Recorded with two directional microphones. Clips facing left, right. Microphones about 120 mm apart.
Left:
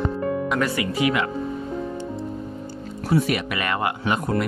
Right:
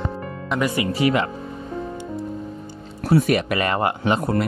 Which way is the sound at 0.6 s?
15° right (ahead or behind).